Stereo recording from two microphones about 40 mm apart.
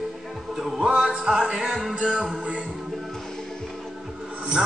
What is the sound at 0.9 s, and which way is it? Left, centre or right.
Music, right.